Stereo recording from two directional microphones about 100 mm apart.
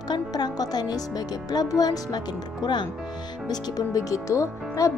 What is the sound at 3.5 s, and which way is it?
Speech, 35° left (ahead or behind).